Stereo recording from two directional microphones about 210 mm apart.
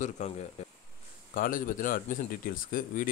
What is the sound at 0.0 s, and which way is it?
Speech, 30° left (ahead or behind).